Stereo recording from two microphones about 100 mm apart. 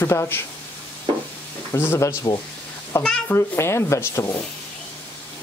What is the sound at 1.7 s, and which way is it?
Speech, 25° left (ahead or behind).